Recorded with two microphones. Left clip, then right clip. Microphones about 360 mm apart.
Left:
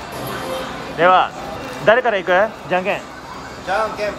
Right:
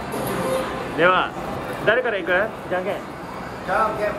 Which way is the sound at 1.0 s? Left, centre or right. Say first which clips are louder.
Left 5 dB; centre.